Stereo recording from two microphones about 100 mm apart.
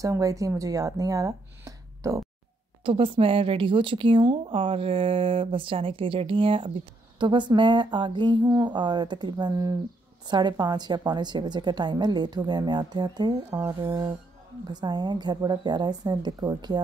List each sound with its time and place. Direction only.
0.0 s speech: 35° right (ahead or behind)
2.8 s a woman's voice: 60° right (ahead or behind); by 13.6 s 40° right (ahead or behind)
14.7 s a woman's voice: 45° right (ahead or behind)